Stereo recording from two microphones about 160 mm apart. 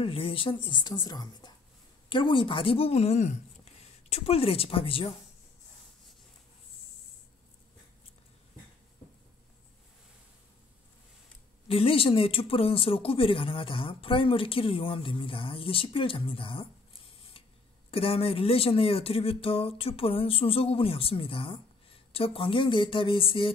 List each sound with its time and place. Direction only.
0.0 s speech: 35° left (ahead or behind)
11.6 s speech: 35° left (ahead or behind)
17.9 s speech: 35° left (ahead or behind)